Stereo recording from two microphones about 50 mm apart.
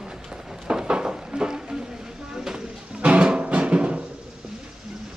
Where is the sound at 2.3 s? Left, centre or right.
Centre.